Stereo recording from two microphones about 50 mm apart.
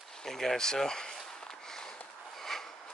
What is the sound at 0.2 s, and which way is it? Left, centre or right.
Speech, centre.